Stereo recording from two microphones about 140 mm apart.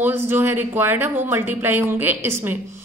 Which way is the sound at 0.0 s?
15° right (ahead or behind).